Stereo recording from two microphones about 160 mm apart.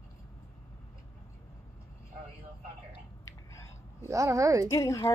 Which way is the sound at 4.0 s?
20° right (ahead or behind).